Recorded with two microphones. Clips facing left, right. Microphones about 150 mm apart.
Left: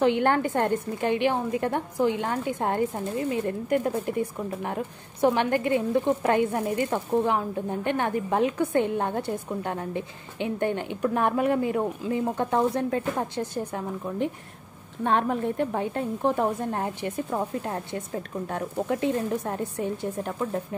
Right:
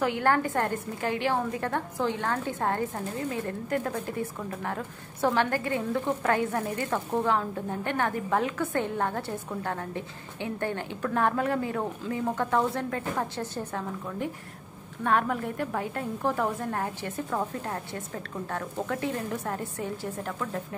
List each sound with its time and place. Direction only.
0.0 s a woman's voice: 20° left (ahead or behind)
15.0 s a woman's voice: 25° left (ahead or behind)